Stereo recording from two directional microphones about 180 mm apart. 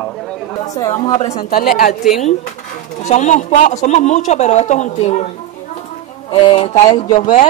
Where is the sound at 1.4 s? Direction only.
55° left (ahead or behind).